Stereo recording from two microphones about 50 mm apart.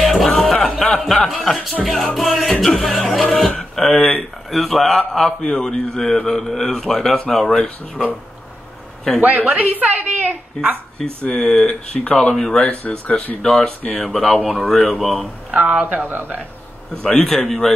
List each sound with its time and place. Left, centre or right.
0.0 s music: centre
1.0 s speech: centre
3.9 s speech: left
4.5 s speech: centre
9.2 s a woman's voice: right
11.2 s speech: centre
12.6 s speech: left
13.4 s speech: centre
13.7 s speech: left
14.0 s speech: centre
15.5 s a woman's voice: right
16.9 s speech: centre